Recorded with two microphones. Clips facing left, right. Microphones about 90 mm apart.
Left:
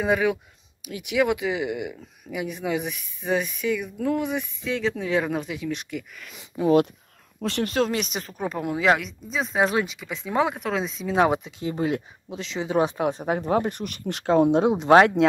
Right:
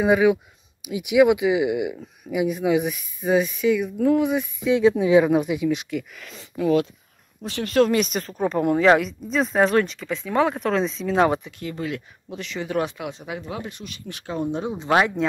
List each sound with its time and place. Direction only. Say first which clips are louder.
0.0 s speech: right 5 dB; 10° right (ahead or behind)
4.6 s speech: right 9 dB; 15° right (ahead or behind); by 6.4 s centre (ahead or behind)
7.7 s speech: right 10 dB; 5° left (ahead or behind)
11.6 s speech: left 4 dB; 25° left (ahead or behind)
12.8 s speech: left 6 dB; 35° left (ahead or behind); by 14.9 s 80° left